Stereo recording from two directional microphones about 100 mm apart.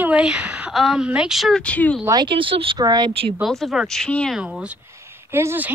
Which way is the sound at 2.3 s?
60° right (ahead or behind).